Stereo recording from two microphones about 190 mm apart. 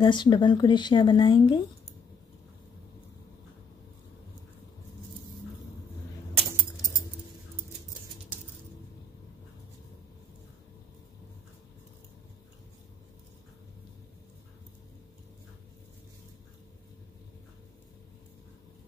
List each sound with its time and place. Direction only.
0.0 s speech: 25° left (ahead or behind)